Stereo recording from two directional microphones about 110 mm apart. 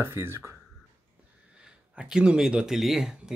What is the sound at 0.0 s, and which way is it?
Speech, 20° right (ahead or behind).